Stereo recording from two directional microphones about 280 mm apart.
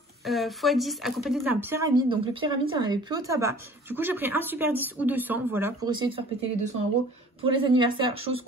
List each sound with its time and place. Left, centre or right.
0.2 s speech: centre